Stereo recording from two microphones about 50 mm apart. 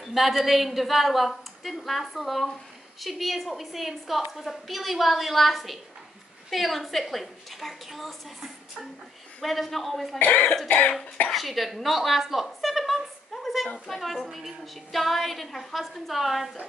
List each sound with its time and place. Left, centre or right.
0.0 s a woman's voice: centre
10.1 s speech: left
11.2 s a woman's voice: centre